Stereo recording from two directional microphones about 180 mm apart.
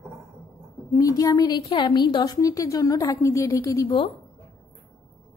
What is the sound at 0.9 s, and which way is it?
A woman's voice, 20° left (ahead or behind).